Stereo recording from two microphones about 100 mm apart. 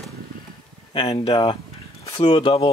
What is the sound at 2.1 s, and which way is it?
Speech, 65° left (ahead or behind).